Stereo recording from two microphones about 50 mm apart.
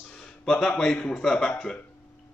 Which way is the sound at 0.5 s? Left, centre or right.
Centre.